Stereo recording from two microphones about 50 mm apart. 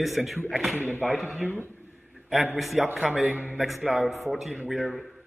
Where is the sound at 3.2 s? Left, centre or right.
Right.